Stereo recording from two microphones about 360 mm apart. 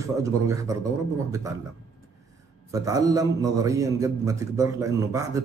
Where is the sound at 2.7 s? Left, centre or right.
Centre.